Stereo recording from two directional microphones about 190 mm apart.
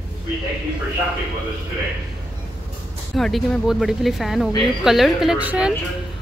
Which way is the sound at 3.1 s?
Centre (ahead or behind).